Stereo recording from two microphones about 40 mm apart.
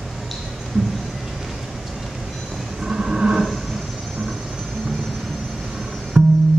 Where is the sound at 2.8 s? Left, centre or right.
Centre.